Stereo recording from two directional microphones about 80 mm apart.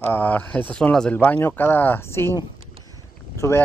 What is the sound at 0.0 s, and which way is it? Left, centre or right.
Speech, left.